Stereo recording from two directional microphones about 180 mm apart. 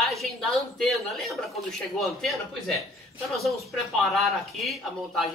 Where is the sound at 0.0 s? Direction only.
Centre (ahead or behind).